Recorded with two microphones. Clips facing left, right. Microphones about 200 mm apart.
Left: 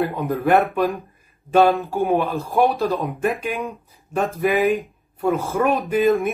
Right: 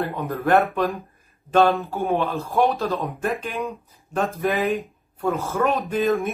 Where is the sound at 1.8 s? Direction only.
15° left (ahead or behind).